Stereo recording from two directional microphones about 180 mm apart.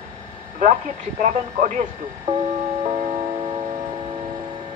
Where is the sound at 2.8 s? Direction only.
35° right (ahead or behind).